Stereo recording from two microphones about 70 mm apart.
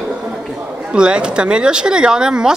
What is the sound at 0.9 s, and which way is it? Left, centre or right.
A woman's voice, centre.